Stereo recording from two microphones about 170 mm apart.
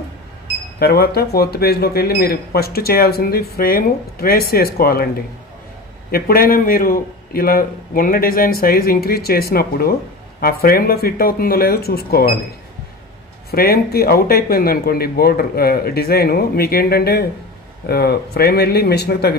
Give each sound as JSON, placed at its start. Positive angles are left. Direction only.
{"t": 0.7, "sound": "speech", "side_deg": 65}
{"t": 13.5, "sound": "speech", "side_deg": 65}